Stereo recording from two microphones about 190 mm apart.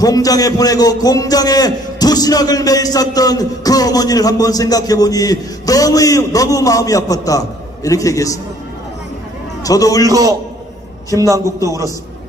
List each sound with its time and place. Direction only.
0.0 s a man's voice: 20° left (ahead or behind)
9.6 s a man's voice: 20° left (ahead or behind)
10.0 s a man's voice: 20° right (ahead or behind)